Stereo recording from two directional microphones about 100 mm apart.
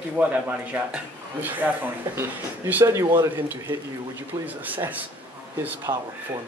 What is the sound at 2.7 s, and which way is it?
Speech, 25° right (ahead or behind).